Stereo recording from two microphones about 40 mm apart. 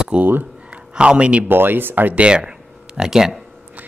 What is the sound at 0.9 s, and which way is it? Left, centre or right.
Speech, right.